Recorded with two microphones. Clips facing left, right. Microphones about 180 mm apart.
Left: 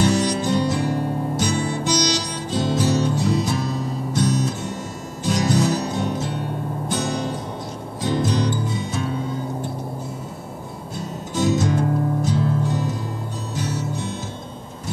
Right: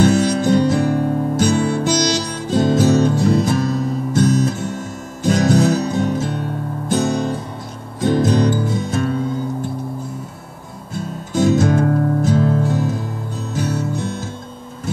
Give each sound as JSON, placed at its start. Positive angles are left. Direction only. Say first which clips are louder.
{"t": 0.0, "sound": "music", "louder": "right 5 dB", "side_deg": -50}
{"t": 11.3, "sound": "music", "louder": "right 5 dB", "side_deg": -55}
{"t": 13.6, "sound": "music", "louder": "right 5 dB", "side_deg": -50}